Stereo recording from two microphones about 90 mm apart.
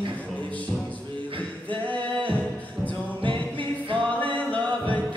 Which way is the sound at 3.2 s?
65° right (ahead or behind).